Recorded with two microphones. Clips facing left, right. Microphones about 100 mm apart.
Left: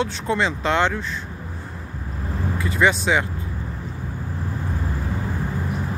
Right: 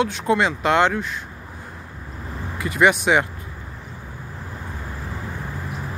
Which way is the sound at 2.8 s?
15° right (ahead or behind).